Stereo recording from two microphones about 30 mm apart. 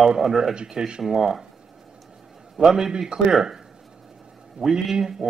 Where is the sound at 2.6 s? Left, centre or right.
Centre.